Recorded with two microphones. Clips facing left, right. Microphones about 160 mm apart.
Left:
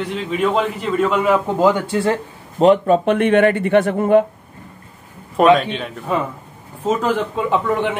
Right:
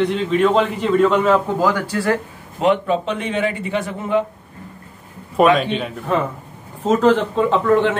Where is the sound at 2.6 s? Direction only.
40° left (ahead or behind).